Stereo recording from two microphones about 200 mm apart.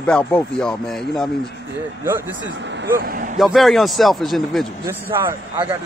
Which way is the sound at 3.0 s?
45° right (ahead or behind).